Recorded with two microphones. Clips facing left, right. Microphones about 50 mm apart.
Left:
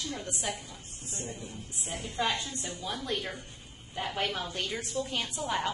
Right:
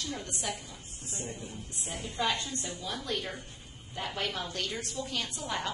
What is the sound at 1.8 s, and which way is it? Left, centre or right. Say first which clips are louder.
Speech: left 1 dB; left.